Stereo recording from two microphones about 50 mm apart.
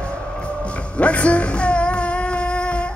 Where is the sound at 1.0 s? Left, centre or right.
Left.